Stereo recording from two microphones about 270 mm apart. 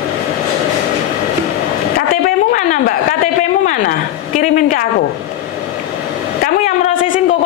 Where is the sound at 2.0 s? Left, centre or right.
Left.